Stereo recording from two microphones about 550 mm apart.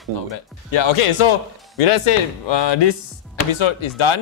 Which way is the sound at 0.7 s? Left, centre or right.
Left.